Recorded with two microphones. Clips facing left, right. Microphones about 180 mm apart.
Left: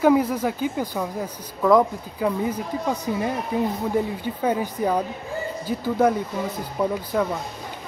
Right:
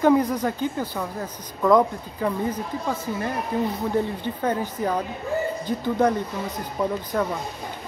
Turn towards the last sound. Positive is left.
turn(degrees=5)  # may be behind; listen again after turning